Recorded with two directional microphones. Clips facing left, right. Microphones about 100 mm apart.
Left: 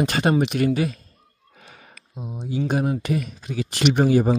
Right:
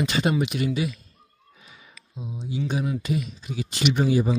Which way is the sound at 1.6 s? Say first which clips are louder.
Left 4 dB; 50° left (ahead or behind).